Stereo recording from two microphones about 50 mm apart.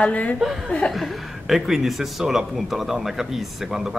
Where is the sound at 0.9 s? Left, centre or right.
Centre.